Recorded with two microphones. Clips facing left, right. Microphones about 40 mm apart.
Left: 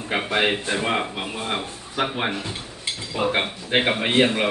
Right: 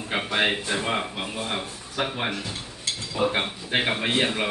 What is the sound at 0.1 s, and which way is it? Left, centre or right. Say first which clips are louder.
Speech: left 2 dB; centre.